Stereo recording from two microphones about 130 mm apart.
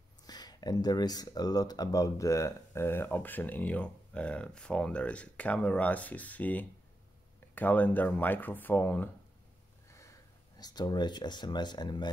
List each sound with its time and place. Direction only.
0.3 s speech: 30° left (ahead or behind); by 9.1 s 15° left (ahead or behind)
9.8 s a sound: 25° left (ahead or behind)
10.6 s speech: 30° left (ahead or behind)